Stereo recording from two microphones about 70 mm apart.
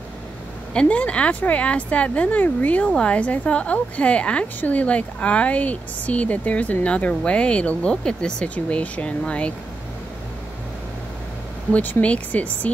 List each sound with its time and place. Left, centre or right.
0.7 s a woman's voice: centre
11.7 s speech: left